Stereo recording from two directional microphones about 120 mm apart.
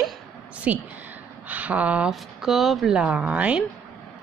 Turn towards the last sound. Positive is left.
turn(degrees=-10)  # may be behind; listen again after turning